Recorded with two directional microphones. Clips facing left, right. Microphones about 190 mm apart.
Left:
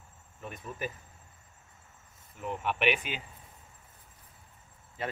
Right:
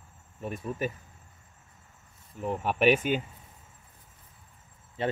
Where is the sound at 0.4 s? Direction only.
30° right (ahead or behind).